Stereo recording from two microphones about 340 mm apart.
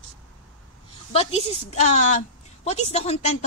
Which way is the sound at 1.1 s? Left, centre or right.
Centre.